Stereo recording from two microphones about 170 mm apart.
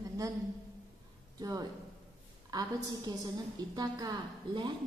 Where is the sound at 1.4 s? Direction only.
20° right (ahead or behind).